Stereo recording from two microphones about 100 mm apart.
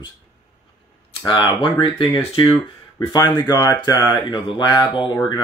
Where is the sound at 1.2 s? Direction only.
55° left (ahead or behind).